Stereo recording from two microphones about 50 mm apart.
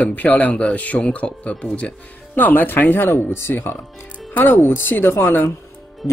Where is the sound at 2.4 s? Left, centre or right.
Left.